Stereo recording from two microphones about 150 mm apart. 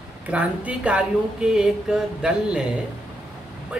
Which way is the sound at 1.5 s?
5° right (ahead or behind).